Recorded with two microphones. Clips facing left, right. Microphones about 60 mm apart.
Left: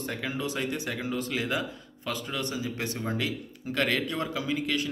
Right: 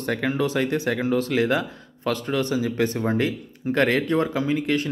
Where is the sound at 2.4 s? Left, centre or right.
Right.